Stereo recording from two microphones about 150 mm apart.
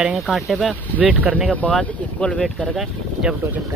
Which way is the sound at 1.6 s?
5° left (ahead or behind).